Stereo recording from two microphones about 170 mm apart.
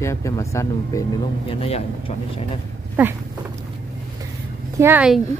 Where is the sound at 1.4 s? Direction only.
35° left (ahead or behind).